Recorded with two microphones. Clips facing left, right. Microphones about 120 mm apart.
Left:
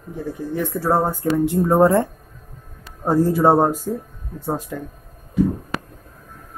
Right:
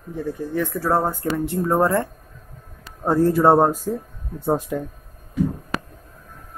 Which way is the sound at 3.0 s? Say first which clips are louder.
Even; 10° left (ahead or behind).